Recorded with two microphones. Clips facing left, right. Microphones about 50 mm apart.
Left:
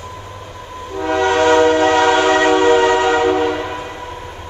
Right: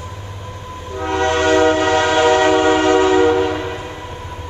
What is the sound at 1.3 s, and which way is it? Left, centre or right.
Train, centre.